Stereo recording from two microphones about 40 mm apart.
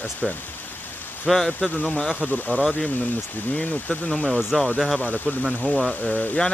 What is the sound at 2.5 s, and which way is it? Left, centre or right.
Speech, left.